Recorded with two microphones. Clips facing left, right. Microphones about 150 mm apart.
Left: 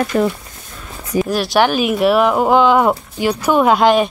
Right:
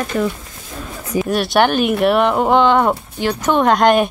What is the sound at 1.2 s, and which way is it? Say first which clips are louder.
Speech: even; centre (ahead or behind).